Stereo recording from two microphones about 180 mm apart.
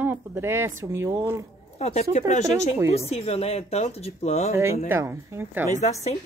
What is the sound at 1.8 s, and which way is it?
Speech, 35° left (ahead or behind).